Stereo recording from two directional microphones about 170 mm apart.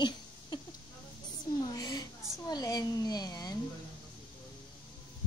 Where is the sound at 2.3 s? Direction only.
20° left (ahead or behind).